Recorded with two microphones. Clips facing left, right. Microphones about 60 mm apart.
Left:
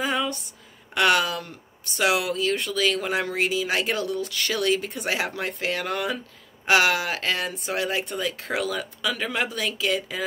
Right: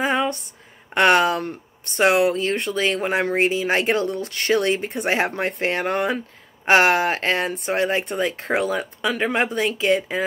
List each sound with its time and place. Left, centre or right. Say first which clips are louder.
0.0 s a sound: right 4 dB; right
0.9 s speech: right 5 dB; right
7.4 s speech: right 5 dB; right